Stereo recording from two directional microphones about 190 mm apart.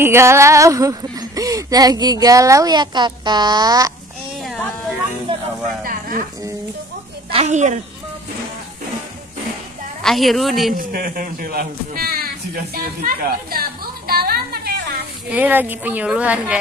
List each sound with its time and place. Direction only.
0.0 s speech: 15° right (ahead or behind)
4.4 s a sound: centre (ahead or behind)
5.3 s music: 30° right (ahead or behind)
5.9 s a sound: 50° right (ahead or behind)
7.2 s a woman's voice: 35° right (ahead or behind)
10.0 s a woman's voice: centre (ahead or behind)
10.8 s speech: 50° right (ahead or behind)
12.7 s a sound: 50° right (ahead or behind)
15.2 s a woman's voice: 10° right (ahead or behind)